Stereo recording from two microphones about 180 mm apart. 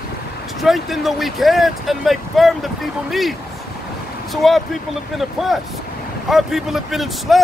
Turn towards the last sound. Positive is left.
turn(degrees=0)  # may be behind; listen again after turning